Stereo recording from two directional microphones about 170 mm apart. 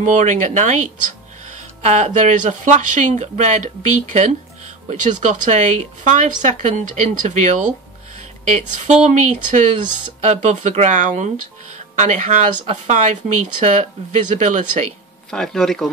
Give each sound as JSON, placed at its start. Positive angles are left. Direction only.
{"t": 0.0, "sound": "speech", "side_deg": -45}
{"t": 9.8, "sound": "speech", "side_deg": -25}
{"t": 10.2, "sound": "speech", "side_deg": -40}
{"t": 15.3, "sound": "speech", "side_deg": 5}